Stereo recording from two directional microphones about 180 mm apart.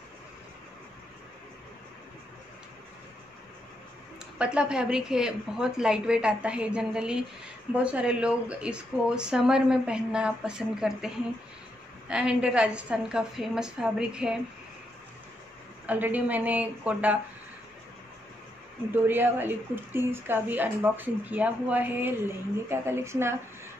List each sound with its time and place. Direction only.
4.4 s speech: 5° right (ahead or behind)
12.1 s speech: 5° right (ahead or behind)
15.9 s speech: 10° right (ahead or behind)
18.9 s speech: 10° right (ahead or behind)